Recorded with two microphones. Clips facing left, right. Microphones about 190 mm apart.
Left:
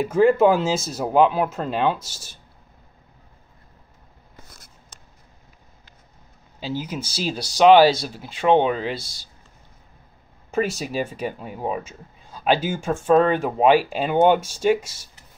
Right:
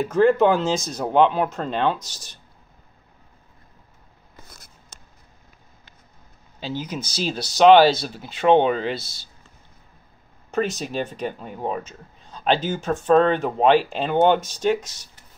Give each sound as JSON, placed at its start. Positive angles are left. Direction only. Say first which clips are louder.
{"t": 0.0, "sound": "speech", "louder": "left 1 dB", "side_deg": 10}
{"t": 6.6, "sound": "speech", "louder": "left 1 dB", "side_deg": 10}
{"t": 10.5, "sound": "speech", "louder": "left 1 dB", "side_deg": 10}